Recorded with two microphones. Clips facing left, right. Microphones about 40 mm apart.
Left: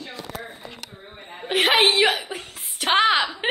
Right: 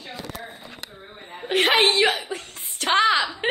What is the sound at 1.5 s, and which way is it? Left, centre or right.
Speech, centre.